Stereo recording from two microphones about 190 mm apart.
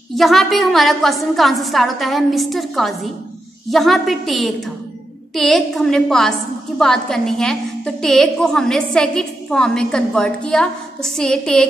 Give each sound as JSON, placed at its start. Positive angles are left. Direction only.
{"t": 0.1, "sound": "a woman's voice", "side_deg": 0}